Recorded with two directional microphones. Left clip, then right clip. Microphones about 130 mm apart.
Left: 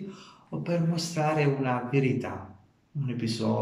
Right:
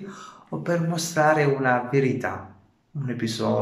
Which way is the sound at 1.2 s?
20° left (ahead or behind).